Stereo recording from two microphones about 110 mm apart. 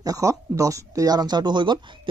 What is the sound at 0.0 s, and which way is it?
Speech, 30° right (ahead or behind).